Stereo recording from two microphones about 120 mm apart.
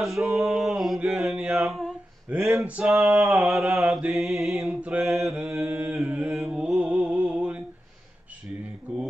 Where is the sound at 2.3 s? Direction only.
10° right (ahead or behind).